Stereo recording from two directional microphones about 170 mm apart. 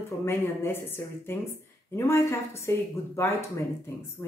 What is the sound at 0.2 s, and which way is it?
Speech, 15° left (ahead or behind).